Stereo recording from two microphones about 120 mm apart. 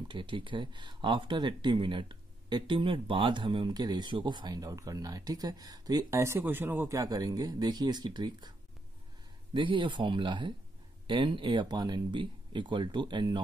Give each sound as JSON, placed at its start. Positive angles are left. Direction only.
{"t": 0.1, "sound": "speech", "side_deg": -45}